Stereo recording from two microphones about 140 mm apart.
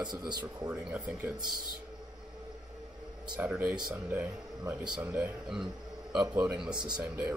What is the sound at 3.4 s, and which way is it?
Speech, 10° right (ahead or behind).